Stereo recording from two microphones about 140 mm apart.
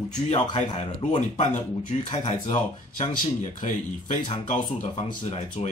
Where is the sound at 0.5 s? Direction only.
55° left (ahead or behind).